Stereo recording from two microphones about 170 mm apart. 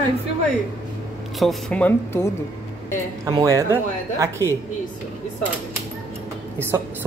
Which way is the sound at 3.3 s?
20° right (ahead or behind).